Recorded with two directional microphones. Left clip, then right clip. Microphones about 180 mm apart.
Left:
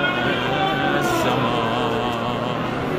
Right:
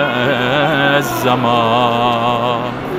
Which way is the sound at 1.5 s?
30° right (ahead or behind).